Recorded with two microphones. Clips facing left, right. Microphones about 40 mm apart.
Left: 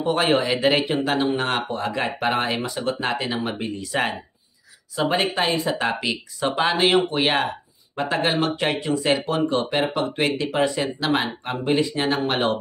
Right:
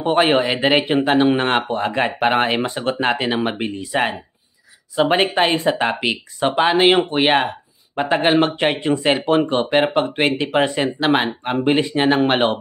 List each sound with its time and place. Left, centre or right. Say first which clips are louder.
0.0 s speech: right 4 dB; right
3.8 s speech: right 4 dB; centre
5.0 s speech: right 5 dB; right